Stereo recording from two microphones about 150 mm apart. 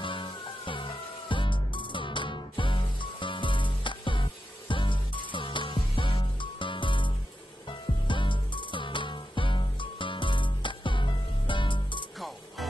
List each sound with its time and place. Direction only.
0.0 s music: 35° left (ahead or behind)
8.1 s music: 35° left (ahead or behind)